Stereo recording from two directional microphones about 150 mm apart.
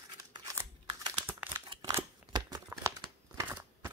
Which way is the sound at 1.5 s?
30° right (ahead or behind).